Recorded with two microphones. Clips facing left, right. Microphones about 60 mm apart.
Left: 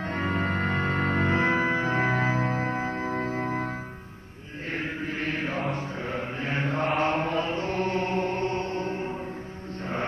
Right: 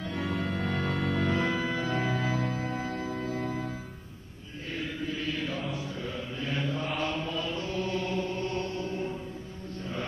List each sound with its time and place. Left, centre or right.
0.0 s music: left
4.6 s chant: left
5.9 s mantra: left